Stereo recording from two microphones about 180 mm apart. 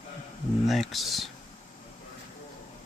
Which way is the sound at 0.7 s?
Centre (ahead or behind).